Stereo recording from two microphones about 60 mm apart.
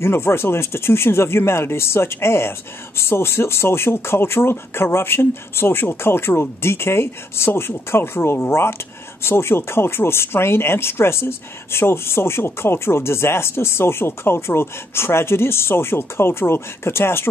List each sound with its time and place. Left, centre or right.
0.0 s speech: left